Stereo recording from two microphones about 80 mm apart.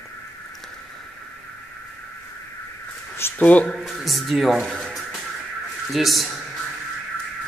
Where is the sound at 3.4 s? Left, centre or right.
Centre.